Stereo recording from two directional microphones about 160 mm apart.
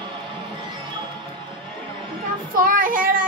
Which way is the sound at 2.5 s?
60° right (ahead or behind).